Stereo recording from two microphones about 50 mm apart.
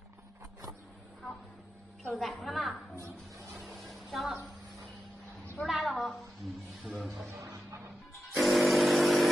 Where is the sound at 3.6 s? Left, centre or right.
Centre.